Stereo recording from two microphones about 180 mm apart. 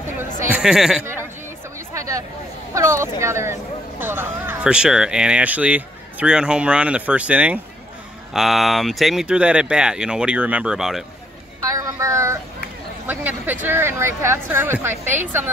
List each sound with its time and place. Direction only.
0.4 s speech: 5° right (ahead or behind)
2.0 s a sound: 15° right (ahead or behind)
2.7 s speech: 15° right (ahead or behind)
11.7 s child singing: 20° right (ahead or behind)
13.0 s speech: 10° right (ahead or behind)